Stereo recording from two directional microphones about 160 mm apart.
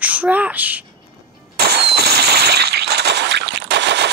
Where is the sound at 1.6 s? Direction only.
85° right.